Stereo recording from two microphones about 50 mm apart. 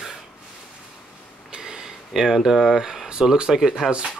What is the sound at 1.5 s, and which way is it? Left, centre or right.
Speech, centre.